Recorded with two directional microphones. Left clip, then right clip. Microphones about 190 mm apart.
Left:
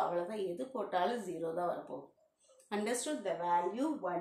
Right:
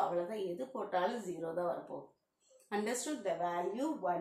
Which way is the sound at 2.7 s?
30° left (ahead or behind).